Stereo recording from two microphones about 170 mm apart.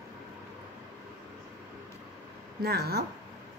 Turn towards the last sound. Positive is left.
turn(degrees=-65)  # may be behind; listen again after turning